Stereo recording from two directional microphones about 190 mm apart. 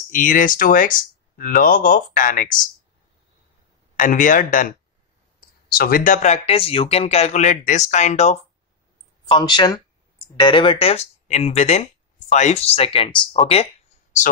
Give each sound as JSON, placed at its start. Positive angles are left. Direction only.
{"t": 0.1, "sound": "speech", "side_deg": 45}
{"t": 3.9, "sound": "speech", "side_deg": 45}
{"t": 9.2, "sound": "speech", "side_deg": 20}